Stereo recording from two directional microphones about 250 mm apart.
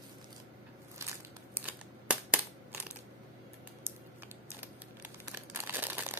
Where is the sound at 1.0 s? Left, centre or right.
Centre.